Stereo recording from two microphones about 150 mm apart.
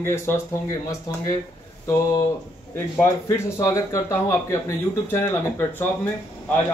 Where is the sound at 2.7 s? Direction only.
15° left (ahead or behind).